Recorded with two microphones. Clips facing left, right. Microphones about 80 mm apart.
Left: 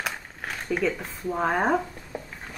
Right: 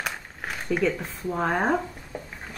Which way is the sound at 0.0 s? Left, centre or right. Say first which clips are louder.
Even; centre.